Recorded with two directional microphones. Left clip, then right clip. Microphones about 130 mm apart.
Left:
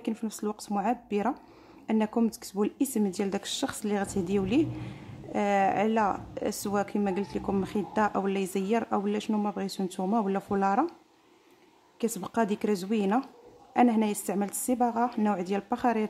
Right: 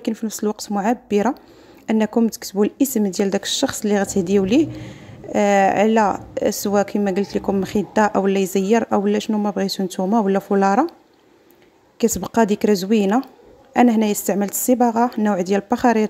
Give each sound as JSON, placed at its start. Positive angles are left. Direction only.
{"t": 0.0, "sound": "speech", "side_deg": -25}
{"t": 12.0, "sound": "speech", "side_deg": -30}